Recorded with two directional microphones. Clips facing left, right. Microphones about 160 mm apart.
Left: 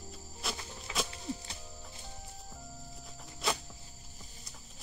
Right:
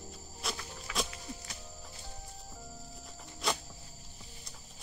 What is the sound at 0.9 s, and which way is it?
Horse, 25° left (ahead or behind).